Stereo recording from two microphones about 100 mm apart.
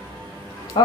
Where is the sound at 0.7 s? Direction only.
45° left (ahead or behind).